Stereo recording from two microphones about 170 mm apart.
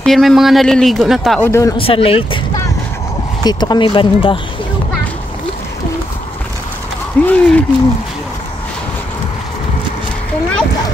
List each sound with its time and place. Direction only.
0.0 s a man's voice: centre (ahead or behind)
1.4 s speech: 15° left (ahead or behind)
1.8 s speech: 35° left (ahead or behind)
7.2 s speech: 5° left (ahead or behind)